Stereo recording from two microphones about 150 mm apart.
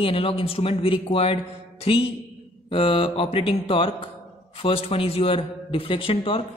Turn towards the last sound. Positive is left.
turn(degrees=35)  # may be behind; listen again after turning